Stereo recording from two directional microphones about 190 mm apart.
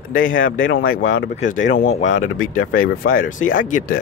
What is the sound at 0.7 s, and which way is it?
Speech, 50° left (ahead or behind).